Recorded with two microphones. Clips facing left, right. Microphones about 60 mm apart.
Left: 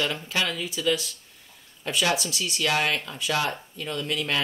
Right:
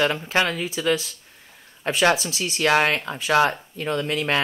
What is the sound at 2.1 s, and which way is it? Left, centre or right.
Speech, right.